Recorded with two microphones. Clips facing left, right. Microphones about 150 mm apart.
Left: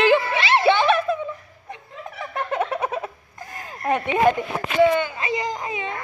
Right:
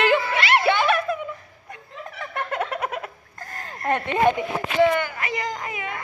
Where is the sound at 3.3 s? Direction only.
10° left (ahead or behind).